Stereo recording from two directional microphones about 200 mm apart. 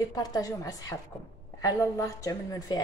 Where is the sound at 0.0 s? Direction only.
20° left (ahead or behind).